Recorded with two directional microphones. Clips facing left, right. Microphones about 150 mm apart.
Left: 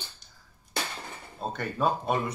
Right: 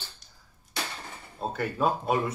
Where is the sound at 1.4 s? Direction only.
5° right (ahead or behind).